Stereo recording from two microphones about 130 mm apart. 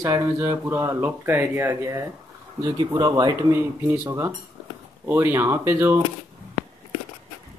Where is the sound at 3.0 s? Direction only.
30° right (ahead or behind).